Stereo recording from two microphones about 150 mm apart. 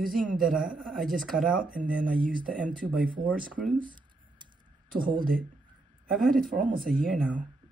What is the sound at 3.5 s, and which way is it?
Speech, 70° right (ahead or behind).